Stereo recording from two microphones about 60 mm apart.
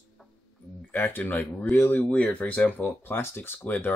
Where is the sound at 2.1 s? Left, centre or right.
Centre.